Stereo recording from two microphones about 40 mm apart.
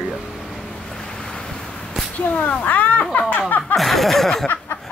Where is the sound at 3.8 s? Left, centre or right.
Centre.